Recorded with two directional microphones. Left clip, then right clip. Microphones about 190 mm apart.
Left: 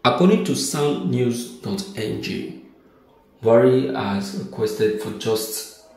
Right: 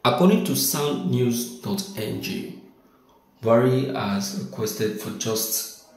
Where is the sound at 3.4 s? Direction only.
Centre (ahead or behind).